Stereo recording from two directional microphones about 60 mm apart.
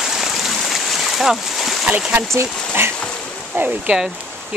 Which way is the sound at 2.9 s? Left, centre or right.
Centre.